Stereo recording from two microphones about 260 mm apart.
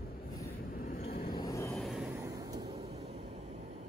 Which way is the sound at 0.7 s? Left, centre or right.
Left.